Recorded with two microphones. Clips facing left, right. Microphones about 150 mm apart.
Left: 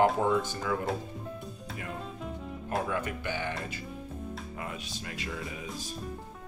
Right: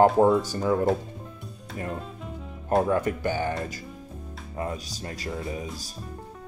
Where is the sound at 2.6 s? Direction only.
40° right (ahead or behind).